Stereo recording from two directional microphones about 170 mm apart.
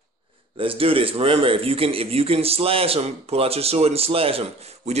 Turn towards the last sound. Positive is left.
turn(degrees=-40)  # may be behind; listen again after turning